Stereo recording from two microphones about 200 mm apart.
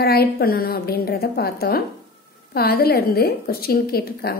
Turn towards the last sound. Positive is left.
turn(degrees=50)  # may be behind; listen again after turning